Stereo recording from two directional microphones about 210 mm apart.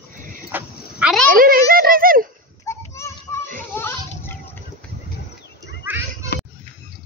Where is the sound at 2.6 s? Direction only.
15° left (ahead or behind).